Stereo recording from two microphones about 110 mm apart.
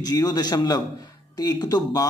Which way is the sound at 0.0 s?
35° left (ahead or behind).